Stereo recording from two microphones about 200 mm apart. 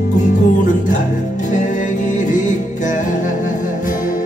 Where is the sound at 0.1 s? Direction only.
40° left (ahead or behind).